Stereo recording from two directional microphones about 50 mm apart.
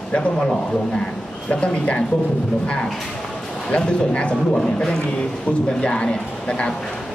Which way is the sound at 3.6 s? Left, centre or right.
Centre.